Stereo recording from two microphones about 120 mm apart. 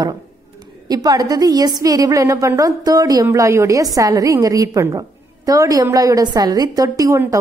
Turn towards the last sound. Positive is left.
turn(degrees=-30)  # may be behind; listen again after turning